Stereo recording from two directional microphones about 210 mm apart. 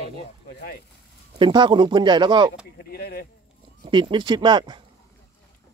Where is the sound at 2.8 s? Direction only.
45° left (ahead or behind).